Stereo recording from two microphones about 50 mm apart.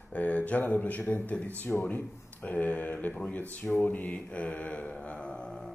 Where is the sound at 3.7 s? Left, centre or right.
Left; by 5.7 s centre.